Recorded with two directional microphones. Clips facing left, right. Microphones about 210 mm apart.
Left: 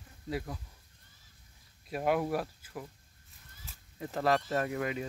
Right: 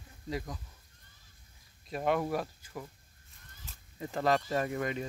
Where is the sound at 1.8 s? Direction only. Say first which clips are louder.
Left 1 dB; 5° left (ahead or behind).